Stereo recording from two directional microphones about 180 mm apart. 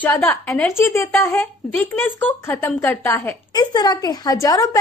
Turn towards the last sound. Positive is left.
turn(degrees=20)  # may be behind; listen again after turning